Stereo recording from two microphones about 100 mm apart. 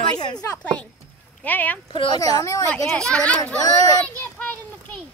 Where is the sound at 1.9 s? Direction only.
55° left (ahead or behind).